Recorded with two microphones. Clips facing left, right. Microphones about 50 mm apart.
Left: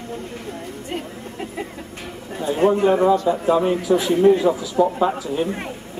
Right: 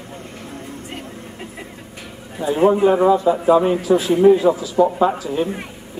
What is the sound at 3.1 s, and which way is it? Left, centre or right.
Speech, centre.